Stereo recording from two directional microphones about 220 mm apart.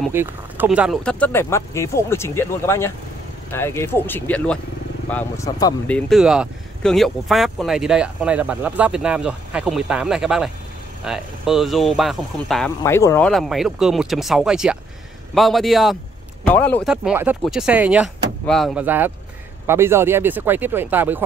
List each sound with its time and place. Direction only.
0.1 s speech: 10° right (ahead or behind); by 5.8 s 15° left (ahead or behind)
5.9 s speech: 5° left (ahead or behind)
16.8 s speech: 5° right (ahead or behind)